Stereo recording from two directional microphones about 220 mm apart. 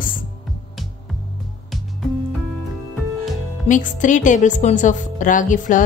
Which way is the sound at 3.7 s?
35° left (ahead or behind).